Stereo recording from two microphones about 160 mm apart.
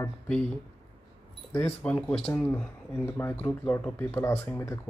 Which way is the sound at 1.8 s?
10° left (ahead or behind).